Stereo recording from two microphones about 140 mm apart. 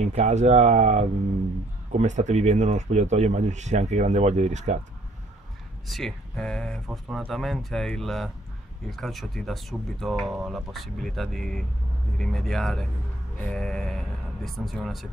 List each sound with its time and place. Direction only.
0.0 s speech: 55° right (ahead or behind)
5.9 s speech: centre (ahead or behind)